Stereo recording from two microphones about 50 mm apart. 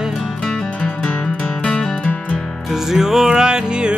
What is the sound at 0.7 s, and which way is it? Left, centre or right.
Music, centre.